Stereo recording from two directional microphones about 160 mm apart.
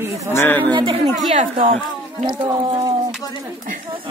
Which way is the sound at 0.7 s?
35° right (ahead or behind).